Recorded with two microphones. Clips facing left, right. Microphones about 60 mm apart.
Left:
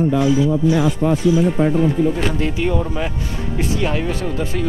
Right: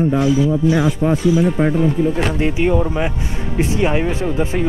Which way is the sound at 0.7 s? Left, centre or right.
Right.